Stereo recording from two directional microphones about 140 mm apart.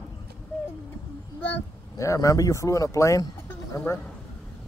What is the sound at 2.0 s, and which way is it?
Speech, 25° left (ahead or behind).